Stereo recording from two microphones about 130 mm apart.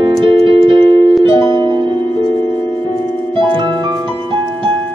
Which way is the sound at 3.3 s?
40° right (ahead or behind).